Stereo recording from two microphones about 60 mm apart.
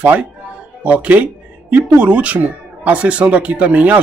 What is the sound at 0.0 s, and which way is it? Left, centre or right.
Speech, right.